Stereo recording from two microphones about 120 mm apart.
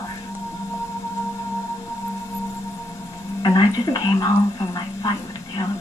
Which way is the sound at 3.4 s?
35° left (ahead or behind).